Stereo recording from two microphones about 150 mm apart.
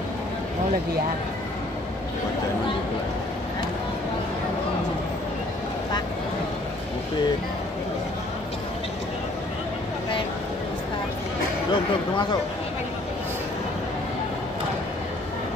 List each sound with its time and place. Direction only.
11.7 s speech: 30° left (ahead or behind)